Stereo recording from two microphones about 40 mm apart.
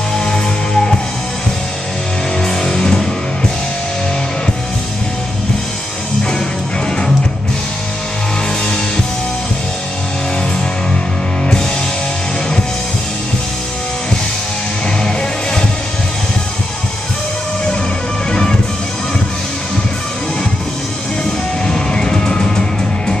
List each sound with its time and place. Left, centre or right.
0.2 s music: centre
2.7 s music: centre
18.3 s music: centre
21.6 s music: centre